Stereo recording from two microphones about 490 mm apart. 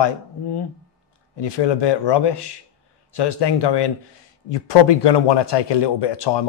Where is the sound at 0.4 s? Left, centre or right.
Left.